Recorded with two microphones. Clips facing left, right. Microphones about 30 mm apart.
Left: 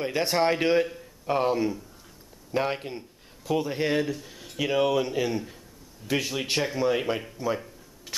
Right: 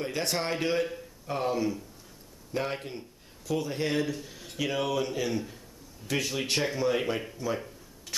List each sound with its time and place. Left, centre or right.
0.0 s a man's voice: centre